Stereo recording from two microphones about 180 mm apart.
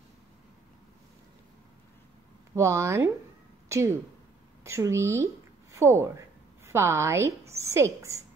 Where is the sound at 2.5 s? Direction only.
15° right (ahead or behind).